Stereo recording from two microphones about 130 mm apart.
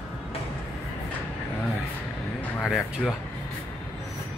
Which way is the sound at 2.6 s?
Centre (ahead or behind).